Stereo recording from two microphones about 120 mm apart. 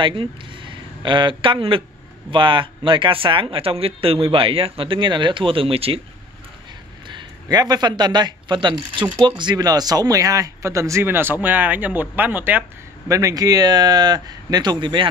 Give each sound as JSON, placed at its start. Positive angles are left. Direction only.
{"t": 0.0, "sound": "a man's voice", "side_deg": -40}
{"t": 7.1, "sound": "speech", "side_deg": -35}
{"t": 13.1, "sound": "speech", "side_deg": -30}